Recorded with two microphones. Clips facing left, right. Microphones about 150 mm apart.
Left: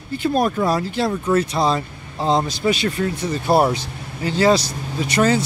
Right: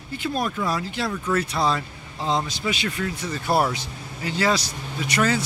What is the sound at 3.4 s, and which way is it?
Speech, 25° left (ahead or behind).